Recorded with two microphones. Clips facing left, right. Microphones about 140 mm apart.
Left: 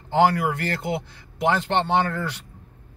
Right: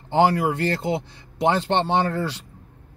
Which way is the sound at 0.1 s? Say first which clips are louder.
Right 1 dB; 25° right (ahead or behind).